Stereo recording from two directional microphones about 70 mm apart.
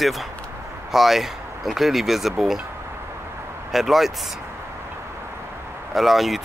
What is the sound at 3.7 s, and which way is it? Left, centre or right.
Speech, centre.